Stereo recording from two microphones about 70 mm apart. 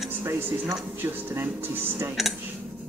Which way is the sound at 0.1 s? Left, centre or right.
Right.